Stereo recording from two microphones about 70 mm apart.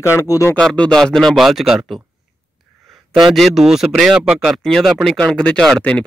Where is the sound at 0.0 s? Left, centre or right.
Left.